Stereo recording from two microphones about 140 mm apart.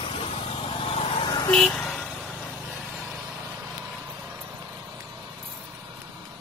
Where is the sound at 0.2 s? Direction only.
40° left (ahead or behind).